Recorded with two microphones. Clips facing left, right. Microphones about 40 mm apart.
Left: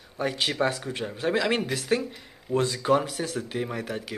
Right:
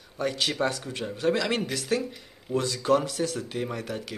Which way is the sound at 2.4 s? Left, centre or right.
Left.